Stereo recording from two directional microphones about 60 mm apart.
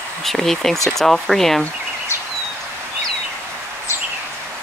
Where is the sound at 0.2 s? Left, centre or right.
Centre.